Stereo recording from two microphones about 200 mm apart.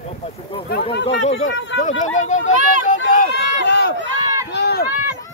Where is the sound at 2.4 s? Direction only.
40° left (ahead or behind).